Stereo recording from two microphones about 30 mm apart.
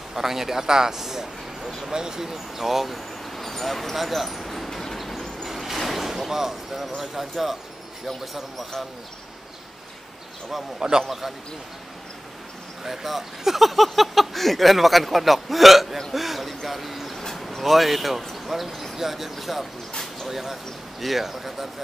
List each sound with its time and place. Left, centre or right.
0.1 s a man's voice: centre
4.6 s train: centre
5.4 s a sound: centre
7.0 s speech: centre
10.8 s a man's voice: right
11.1 s speech: centre
12.8 s speech: centre